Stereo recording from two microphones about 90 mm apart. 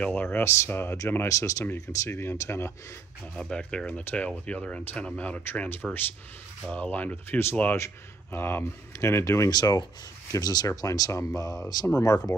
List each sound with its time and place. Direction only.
0.0 s speech: 15° left (ahead or behind)
3.3 s speech: 10° left (ahead or behind)
7.7 s speech: 30° left (ahead or behind)
9.5 s speech: 50° left (ahead or behind)